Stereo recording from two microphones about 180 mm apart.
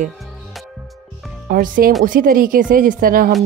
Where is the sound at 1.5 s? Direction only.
50° right (ahead or behind).